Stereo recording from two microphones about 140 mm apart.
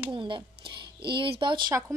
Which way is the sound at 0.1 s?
35° right (ahead or behind).